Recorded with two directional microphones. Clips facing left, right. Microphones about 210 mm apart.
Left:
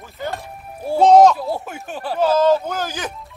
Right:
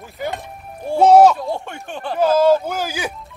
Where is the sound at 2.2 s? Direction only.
10° right (ahead or behind).